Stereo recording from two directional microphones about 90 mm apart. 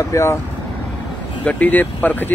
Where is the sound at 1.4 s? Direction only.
20° left (ahead or behind).